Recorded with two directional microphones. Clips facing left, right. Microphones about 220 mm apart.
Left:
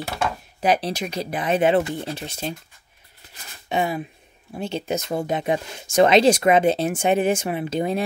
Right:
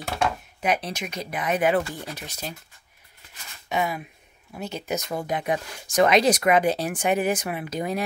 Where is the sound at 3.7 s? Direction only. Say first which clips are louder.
Left 3 dB; 30° left (ahead or behind).